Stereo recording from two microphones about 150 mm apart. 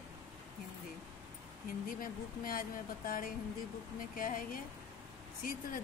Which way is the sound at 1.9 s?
70° left (ahead or behind).